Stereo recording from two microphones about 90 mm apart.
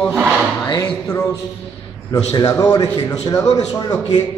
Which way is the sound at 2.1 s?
40° left (ahead or behind).